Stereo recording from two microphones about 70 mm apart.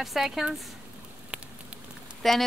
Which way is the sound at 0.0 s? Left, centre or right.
Centre.